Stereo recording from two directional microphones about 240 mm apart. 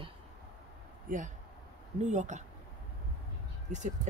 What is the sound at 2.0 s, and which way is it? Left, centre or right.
Speech, right.